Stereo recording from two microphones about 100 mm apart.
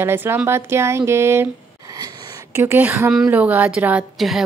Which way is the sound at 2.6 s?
20° right (ahead or behind).